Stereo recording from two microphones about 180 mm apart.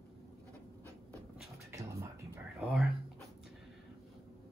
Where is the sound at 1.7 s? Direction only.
15° right (ahead or behind).